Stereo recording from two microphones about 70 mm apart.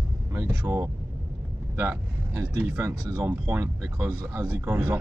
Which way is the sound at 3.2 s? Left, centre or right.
Right.